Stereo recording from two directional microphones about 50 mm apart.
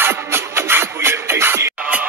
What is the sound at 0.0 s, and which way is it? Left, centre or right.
Music, right.